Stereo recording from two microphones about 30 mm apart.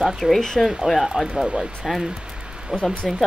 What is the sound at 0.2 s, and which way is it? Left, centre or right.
Speech, centre.